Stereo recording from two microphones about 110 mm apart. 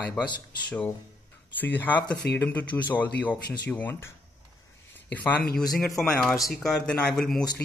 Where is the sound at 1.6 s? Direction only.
15° left (ahead or behind).